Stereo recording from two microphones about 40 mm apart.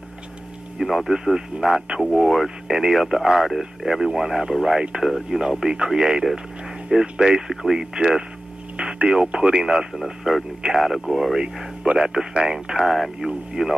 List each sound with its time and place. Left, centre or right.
0.7 s speech: centre
1.1 s speech: centre
10.8 s speech: centre
11.3 s speech: centre
12.9 s speech: centre
13.6 s speech: centre